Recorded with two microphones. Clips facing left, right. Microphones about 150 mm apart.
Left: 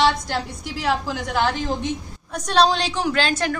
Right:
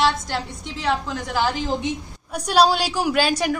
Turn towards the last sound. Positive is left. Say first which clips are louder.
# right 2 dB
turn(degrees=-10)  # may be behind; listen again after turning